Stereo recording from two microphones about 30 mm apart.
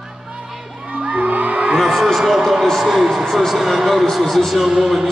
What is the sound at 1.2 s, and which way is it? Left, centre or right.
Music, right.